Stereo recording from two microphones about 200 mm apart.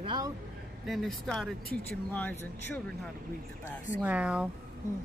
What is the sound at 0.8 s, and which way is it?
Speech, centre (ahead or behind).